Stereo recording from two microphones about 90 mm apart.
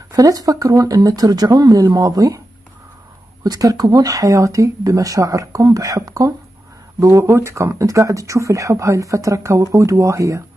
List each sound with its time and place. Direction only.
0.1 s speech: 45° right (ahead or behind)
3.4 s speech: 45° right (ahead or behind)